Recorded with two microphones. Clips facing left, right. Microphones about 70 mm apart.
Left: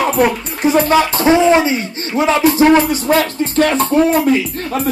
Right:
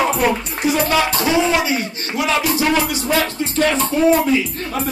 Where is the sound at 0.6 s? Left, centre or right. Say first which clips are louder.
Left 5 dB; left.